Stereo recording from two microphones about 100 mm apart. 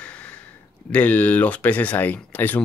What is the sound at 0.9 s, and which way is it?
Speech, 15° left (ahead or behind).